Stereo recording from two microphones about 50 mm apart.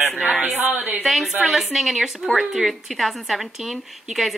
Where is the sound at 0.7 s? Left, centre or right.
Right.